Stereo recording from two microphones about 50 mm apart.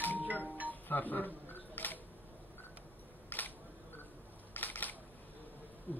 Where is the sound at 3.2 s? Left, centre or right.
Left.